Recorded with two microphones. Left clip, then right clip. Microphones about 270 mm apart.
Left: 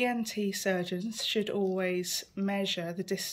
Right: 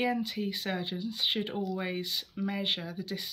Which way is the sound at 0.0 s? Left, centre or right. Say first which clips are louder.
Left 1 dB; centre.